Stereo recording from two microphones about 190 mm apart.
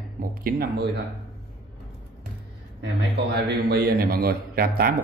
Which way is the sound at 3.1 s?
60° right (ahead or behind).